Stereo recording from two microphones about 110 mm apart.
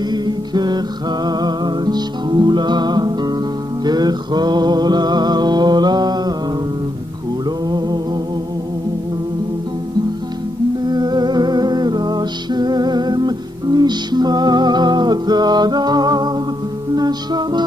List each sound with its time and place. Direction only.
0.1 s music: 40° right (ahead or behind)
7.6 s music: 40° right (ahead or behind)
10.8 s music: 40° right (ahead or behind)